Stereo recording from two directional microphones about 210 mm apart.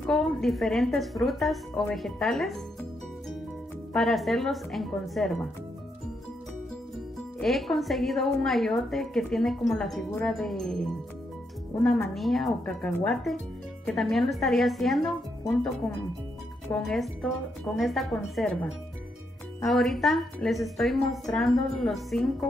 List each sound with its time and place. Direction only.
0.0 s a woman's voice: centre (ahead or behind)
3.9 s a woman's voice: centre (ahead or behind)
7.3 s a woman's voice: centre (ahead or behind)
16.7 s a woman's voice: centre (ahead or behind)